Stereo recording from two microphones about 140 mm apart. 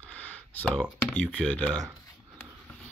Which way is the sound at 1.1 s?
10° left (ahead or behind).